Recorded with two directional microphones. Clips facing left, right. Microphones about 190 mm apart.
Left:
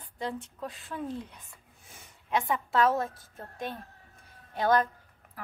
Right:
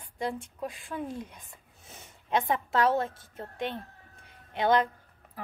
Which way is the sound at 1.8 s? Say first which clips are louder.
Right 3 dB; 25° right (ahead or behind).